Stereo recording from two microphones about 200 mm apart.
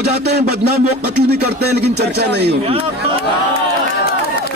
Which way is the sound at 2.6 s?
30° right (ahead or behind).